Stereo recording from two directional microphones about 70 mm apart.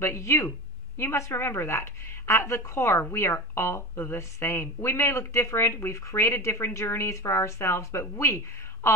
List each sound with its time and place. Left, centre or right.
0.0 s speech: left